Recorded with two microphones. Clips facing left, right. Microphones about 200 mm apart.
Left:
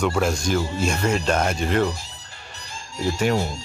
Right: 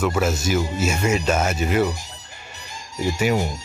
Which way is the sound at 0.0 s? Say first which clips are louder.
Even; 5° right (ahead or behind).